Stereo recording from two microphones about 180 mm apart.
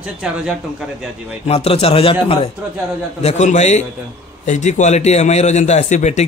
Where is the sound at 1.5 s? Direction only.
35° left (ahead or behind).